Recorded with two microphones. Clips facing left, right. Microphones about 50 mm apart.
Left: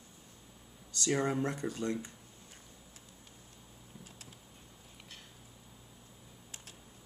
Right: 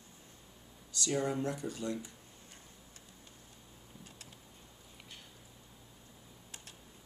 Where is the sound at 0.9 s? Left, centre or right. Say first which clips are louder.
Left 2 dB; left.